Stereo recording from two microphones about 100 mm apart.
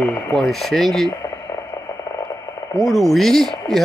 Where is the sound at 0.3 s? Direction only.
Centre (ahead or behind).